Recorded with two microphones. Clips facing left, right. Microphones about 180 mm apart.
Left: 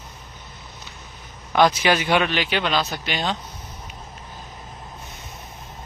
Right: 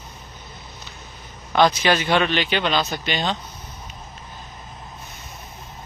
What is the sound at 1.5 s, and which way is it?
Speech, 10° left (ahead or behind).